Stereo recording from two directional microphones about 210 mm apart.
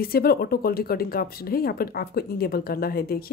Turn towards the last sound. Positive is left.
turn(degrees=45)  # may be behind; listen again after turning